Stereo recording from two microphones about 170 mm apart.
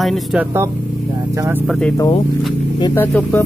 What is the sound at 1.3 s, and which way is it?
Speech, 15° right (ahead or behind).